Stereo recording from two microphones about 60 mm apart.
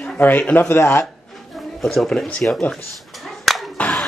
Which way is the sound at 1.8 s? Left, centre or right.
Centre.